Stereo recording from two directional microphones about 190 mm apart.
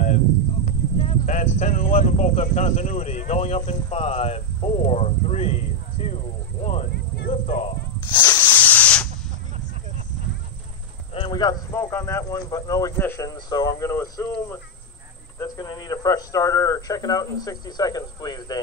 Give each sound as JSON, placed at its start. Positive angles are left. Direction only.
{"t": 0.7, "sound": "a sound", "side_deg": 40}
{"t": 1.6, "sound": "speech", "side_deg": 40}
{"t": 6.0, "sound": "a sound", "side_deg": 35}
{"t": 7.2, "sound": "snake", "side_deg": 45}
{"t": 8.5, "sound": "spray", "side_deg": 10}
{"t": 11.1, "sound": "a man's voice", "side_deg": 25}
{"t": 15.3, "sound": "speech", "side_deg": 20}